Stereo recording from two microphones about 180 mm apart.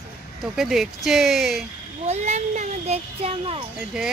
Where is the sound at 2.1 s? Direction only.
40° right (ahead or behind).